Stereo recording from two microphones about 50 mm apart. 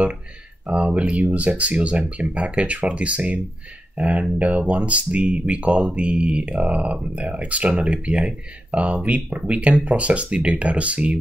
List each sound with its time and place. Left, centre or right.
0.7 s speech: right